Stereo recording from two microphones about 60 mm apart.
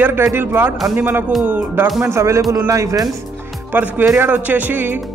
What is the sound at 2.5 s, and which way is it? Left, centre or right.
Speech, right.